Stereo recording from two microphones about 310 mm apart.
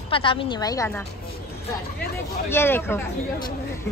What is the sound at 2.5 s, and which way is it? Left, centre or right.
Speech, centre.